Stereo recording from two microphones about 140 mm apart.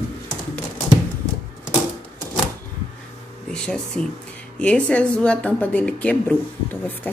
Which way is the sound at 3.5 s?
5° left (ahead or behind).